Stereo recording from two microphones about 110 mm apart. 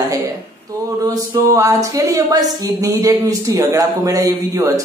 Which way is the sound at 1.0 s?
30° right (ahead or behind).